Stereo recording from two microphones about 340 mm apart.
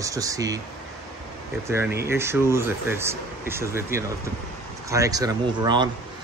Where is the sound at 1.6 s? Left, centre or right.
Centre.